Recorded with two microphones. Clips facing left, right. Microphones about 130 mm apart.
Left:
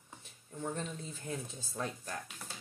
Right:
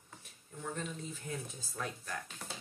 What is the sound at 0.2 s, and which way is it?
Speech, 30° left (ahead or behind).